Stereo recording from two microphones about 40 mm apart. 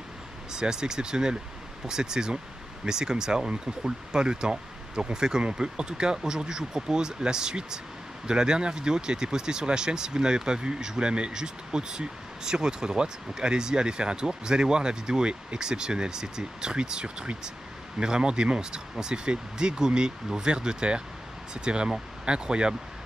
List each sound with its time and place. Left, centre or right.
0.5 s speech: centre